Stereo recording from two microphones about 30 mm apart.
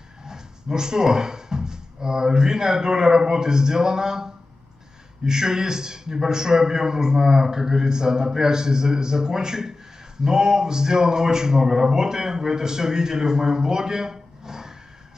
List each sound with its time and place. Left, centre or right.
0.2 s a man's voice: right